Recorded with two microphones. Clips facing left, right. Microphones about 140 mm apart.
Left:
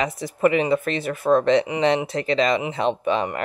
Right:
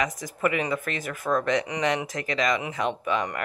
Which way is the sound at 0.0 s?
25° left (ahead or behind).